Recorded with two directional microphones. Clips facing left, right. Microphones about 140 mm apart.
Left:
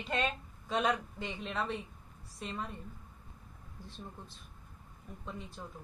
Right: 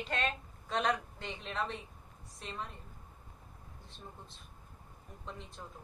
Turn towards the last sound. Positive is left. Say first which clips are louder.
# left 2 dB
turn(degrees=5)  # may be behind; listen again after turning